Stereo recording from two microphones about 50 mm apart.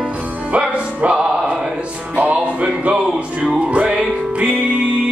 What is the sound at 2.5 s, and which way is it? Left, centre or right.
Music, centre.